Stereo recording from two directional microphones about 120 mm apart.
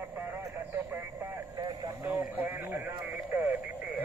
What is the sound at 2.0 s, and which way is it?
Radio, 20° right (ahead or behind).